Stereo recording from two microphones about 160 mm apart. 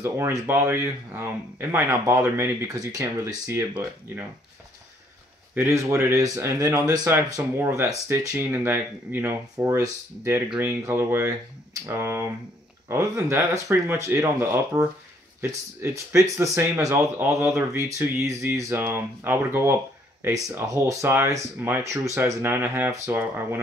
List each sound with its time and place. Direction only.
0.0 s speech: 15° right (ahead or behind)
5.5 s speech: 15° right (ahead or behind)